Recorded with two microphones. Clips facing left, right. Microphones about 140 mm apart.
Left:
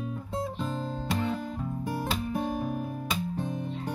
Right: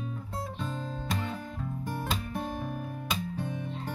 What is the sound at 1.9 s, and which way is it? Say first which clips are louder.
Guitar: left 4 dB; 5° left (ahead or behind).